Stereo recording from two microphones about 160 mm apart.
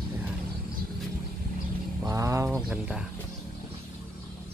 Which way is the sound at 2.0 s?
20° right (ahead or behind).